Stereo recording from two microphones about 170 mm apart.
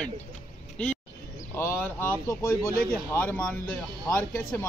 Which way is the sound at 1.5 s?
15° left (ahead or behind).